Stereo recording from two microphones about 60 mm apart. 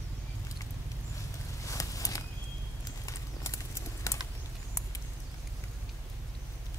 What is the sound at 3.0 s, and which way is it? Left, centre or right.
Clip-clop, left.